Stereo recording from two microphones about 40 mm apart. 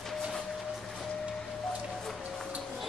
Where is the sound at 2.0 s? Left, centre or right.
Centre.